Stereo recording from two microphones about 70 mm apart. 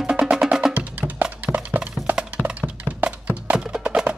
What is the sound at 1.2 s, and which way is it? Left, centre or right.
Music, right.